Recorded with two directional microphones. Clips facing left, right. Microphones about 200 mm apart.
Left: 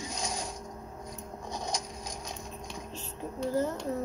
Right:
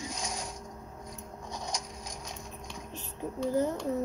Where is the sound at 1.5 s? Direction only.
30° left (ahead or behind).